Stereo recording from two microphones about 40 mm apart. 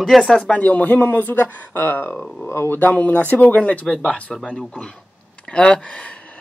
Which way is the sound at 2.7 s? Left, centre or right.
Left.